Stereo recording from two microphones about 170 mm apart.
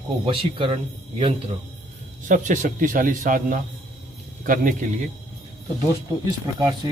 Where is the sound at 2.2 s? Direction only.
50° right (ahead or behind).